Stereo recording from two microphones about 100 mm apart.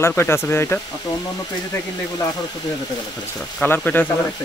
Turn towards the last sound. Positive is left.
turn(degrees=15)  # may be behind; listen again after turning